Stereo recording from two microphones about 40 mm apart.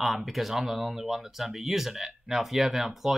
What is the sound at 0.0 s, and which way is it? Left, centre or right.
Speech, centre.